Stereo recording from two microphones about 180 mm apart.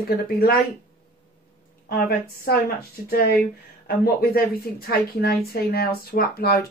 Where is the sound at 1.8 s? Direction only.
60° left (ahead or behind).